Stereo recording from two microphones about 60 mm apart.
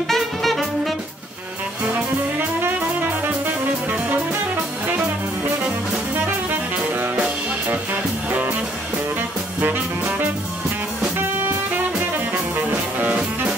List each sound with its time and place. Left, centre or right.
0.1 s music: centre
2.6 s music: right
6.1 s music: right
9.6 s music: right
13.0 s music: right